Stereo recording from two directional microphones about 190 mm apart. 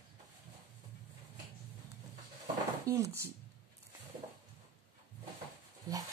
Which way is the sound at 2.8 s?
15° right (ahead or behind).